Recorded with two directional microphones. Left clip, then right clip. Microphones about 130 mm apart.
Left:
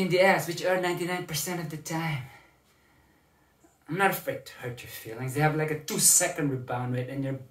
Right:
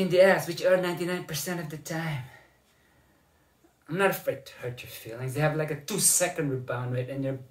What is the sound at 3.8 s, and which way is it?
Speech, centre (ahead or behind).